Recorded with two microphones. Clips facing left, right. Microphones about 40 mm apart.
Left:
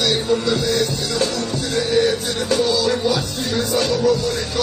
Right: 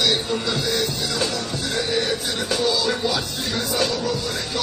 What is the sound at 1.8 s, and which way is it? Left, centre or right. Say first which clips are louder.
Music: left 6 dB; centre.